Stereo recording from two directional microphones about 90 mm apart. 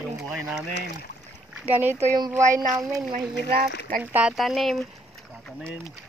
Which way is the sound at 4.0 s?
15° right (ahead or behind).